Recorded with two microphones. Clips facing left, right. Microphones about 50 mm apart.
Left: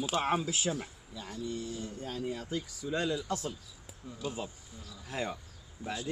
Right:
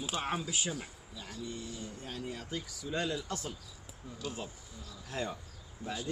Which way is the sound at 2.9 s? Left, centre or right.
Centre.